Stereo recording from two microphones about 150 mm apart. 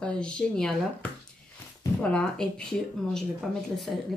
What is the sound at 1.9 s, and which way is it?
Speech, 5° left (ahead or behind).